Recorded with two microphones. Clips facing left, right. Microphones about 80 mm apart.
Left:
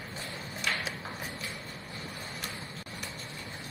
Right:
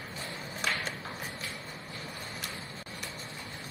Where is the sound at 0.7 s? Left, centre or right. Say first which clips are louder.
Even; centre.